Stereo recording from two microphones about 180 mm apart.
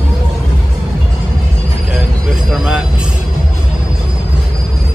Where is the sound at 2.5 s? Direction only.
5° right (ahead or behind).